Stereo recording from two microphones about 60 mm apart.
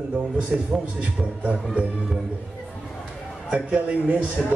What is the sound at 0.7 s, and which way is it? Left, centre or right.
Speech, right.